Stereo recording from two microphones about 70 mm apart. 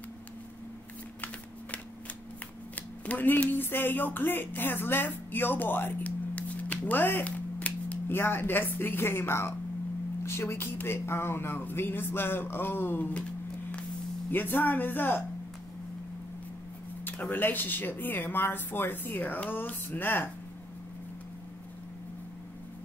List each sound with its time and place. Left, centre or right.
3.1 s speech: left
7.2 s finger snapping: left
8.1 s speech: left
14.3 s speech: left
17.0 s speech: left